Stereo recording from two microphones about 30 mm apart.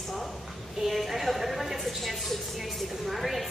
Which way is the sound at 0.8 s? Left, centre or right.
Centre.